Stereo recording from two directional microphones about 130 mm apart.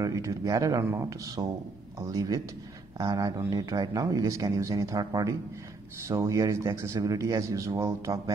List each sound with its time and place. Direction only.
0.0 s speech: 25° right (ahead or behind)